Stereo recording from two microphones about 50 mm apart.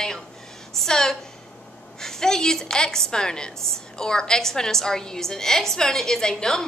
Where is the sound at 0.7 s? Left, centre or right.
Centre.